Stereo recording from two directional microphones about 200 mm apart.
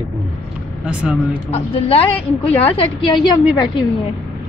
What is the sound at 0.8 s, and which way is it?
Speech, 5° right (ahead or behind).